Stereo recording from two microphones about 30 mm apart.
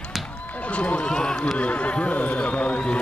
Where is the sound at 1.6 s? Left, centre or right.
Left.